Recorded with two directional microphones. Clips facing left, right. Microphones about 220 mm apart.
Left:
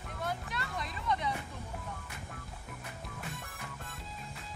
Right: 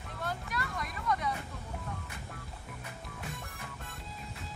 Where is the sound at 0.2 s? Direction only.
20° left (ahead or behind).